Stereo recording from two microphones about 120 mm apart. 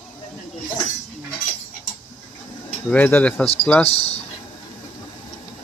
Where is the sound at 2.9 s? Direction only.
15° left (ahead or behind).